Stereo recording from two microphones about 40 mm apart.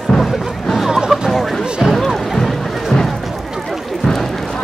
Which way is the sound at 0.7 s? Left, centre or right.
Centre.